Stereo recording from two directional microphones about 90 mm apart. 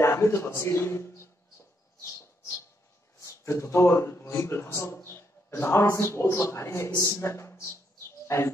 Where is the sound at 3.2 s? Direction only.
30° left (ahead or behind).